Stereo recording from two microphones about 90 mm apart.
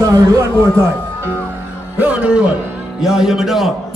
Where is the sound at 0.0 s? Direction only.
35° right (ahead or behind).